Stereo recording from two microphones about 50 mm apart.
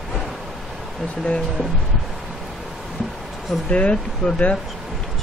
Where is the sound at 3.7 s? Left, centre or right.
Left.